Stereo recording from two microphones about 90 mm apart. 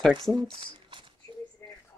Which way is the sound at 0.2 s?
65° right (ahead or behind).